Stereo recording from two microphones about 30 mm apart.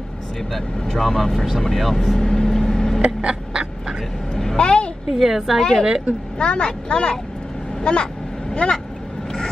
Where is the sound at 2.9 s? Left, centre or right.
Right.